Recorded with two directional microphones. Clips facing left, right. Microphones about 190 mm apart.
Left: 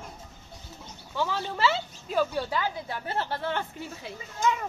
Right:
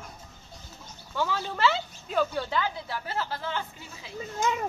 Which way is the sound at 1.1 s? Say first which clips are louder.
Even; centre (ahead or behind).